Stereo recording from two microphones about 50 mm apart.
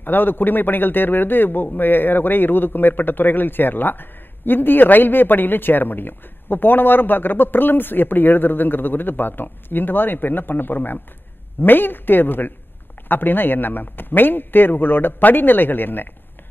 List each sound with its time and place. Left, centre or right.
0.0 s a man's voice: left